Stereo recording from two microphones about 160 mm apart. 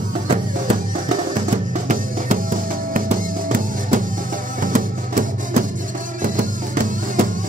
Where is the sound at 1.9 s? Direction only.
55° right (ahead or behind).